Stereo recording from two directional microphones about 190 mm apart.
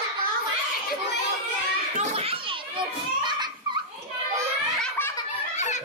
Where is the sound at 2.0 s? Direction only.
30° right (ahead or behind).